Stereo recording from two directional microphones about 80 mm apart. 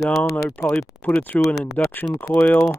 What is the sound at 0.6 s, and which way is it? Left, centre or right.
Speech, centre.